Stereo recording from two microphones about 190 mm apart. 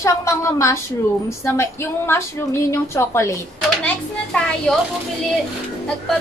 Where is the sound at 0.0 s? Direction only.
15° left (ahead or behind).